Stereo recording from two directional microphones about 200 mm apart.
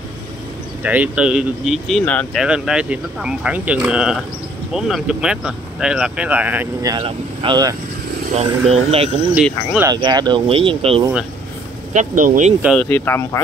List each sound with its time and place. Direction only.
0.8 s speech: 5° right (ahead or behind); by 9.1 s 30° right (ahead or behind)
9.3 s speech: 10° right (ahead or behind)
10.0 s speech: 20° right (ahead or behind)
11.9 s speech: 40° right (ahead or behind)
12.7 s speech: 10° left (ahead or behind)